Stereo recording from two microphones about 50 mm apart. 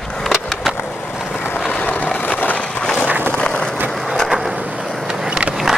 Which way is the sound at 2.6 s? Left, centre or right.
Left.